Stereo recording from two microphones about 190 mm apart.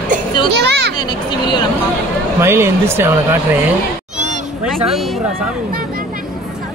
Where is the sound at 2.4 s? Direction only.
15° right (ahead or behind).